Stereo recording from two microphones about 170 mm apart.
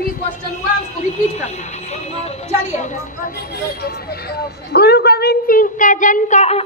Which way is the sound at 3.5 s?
65° left (ahead or behind).